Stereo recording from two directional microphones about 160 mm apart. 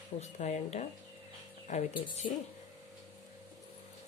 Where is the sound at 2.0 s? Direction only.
30° left (ahead or behind).